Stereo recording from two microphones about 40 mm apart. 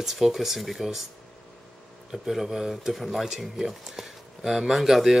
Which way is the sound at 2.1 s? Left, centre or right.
Centre.